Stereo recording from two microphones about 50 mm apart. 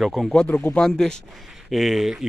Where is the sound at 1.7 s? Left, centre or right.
Centre.